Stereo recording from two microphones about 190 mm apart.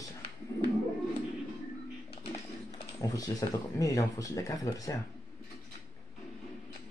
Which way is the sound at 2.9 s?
20° left (ahead or behind).